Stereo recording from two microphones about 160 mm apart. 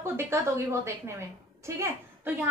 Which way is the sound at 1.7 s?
15° right (ahead or behind).